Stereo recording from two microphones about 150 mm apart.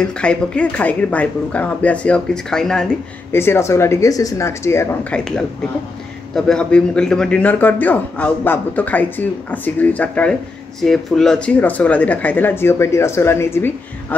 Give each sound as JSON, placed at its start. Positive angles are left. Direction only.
{"t": 0.0, "sound": "a man's voice", "side_deg": 5}
{"t": 3.3, "sound": "a man's voice", "side_deg": 15}
{"t": 5.1, "sound": "a man's voice", "side_deg": 5}